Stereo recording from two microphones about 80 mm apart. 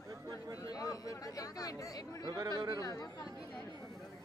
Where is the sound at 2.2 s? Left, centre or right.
Right.